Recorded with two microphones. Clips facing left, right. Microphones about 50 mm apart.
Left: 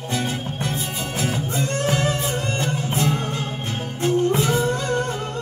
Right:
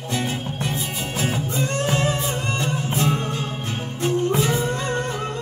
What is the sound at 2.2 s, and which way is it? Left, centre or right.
Music, left.